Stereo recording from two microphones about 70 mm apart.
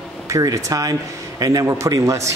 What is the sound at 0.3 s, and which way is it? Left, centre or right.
Speech, right.